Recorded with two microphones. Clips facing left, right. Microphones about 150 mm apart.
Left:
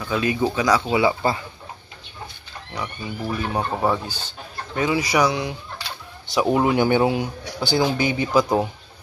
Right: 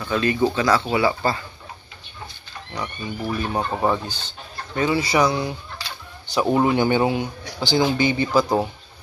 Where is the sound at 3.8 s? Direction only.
10° left (ahead or behind).